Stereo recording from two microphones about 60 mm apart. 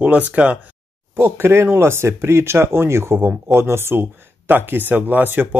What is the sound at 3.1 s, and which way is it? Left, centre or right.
Speech, right.